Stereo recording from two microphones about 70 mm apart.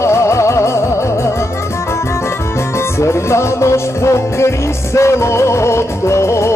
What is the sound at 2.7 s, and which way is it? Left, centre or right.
Music, left.